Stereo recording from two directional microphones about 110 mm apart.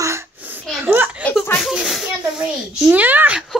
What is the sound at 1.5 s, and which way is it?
A child's voice, centre (ahead or behind).